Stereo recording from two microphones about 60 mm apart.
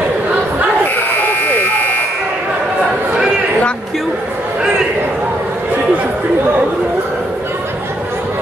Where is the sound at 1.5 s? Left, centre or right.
Left.